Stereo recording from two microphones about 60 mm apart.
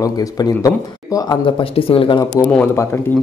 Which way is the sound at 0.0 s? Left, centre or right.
Left.